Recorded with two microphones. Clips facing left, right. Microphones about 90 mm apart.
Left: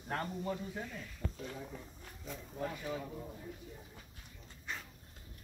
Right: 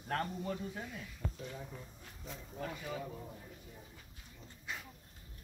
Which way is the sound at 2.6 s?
Centre (ahead or behind).